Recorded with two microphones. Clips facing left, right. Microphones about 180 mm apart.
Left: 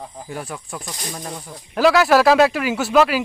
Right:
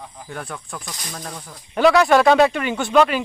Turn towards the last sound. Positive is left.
turn(degrees=5)  # may be behind; listen again after turning